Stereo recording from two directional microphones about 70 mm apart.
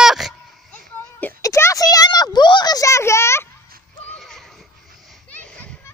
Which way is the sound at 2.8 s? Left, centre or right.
Left.